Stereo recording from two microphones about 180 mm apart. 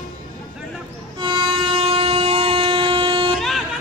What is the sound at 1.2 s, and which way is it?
Train, 30° right (ahead or behind).